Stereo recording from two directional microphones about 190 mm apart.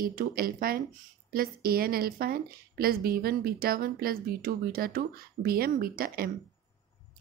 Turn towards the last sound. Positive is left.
turn(degrees=-50)  # may be behind; listen again after turning